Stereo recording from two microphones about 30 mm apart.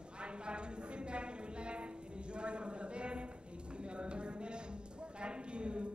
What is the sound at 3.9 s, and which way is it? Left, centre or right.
Clip-clop, right.